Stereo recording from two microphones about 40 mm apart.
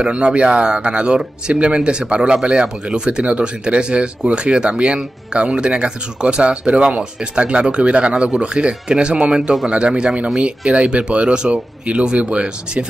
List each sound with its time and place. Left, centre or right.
0.0 s speech: right